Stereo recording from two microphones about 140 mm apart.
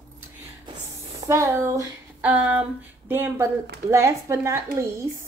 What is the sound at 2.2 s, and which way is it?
Speech, 10° right (ahead or behind).